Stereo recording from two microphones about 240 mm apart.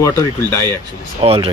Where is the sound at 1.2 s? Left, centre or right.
Right.